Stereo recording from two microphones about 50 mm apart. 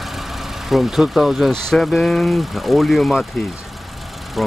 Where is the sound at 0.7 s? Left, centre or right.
Centre.